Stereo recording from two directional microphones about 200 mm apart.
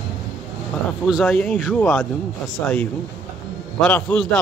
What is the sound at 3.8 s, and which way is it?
Speech, 5° left (ahead or behind).